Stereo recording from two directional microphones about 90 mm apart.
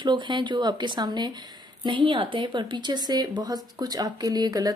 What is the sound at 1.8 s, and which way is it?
Speech, 70° right (ahead or behind).